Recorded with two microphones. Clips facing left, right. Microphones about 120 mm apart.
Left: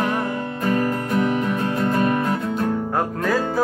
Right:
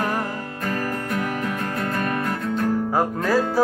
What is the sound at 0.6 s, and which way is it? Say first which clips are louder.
Music: left 5 dB; 25° left (ahead or behind).